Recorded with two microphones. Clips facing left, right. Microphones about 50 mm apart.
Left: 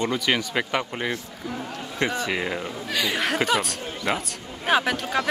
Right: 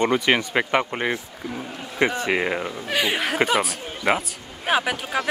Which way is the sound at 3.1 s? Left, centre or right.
Centre.